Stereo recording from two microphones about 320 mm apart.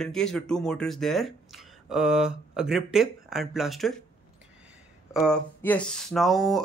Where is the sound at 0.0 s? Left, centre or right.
Centre.